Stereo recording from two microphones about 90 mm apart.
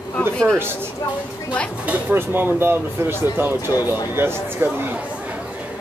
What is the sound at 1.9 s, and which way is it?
Speech, 20° right (ahead or behind).